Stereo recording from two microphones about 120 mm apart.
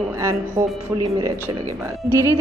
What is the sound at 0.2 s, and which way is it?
Speech, 30° right (ahead or behind).